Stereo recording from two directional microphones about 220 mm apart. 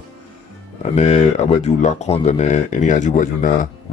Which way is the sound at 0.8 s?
30° left (ahead or behind).